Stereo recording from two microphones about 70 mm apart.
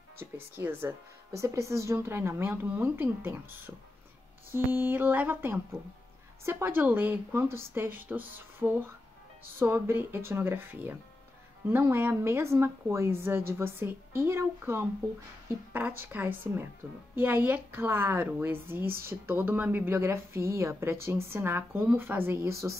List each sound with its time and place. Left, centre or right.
0.2 s a woman's voice: right
1.3 s a woman's voice: right
6.4 s a woman's voice: right
11.8 s a woman's voice: right
15.7 s a woman's voice: right